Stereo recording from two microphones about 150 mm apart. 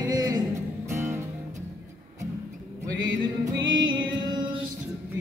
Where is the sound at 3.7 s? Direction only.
30° right (ahead or behind).